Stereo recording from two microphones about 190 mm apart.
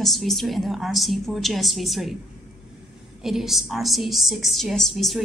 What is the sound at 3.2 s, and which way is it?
A woman's voice, centre (ahead or behind).